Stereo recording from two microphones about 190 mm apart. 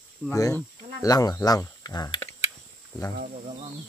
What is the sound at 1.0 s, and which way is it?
Speech, 20° left (ahead or behind).